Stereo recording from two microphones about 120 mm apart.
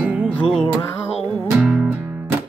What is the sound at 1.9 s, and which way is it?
Music, 15° right (ahead or behind).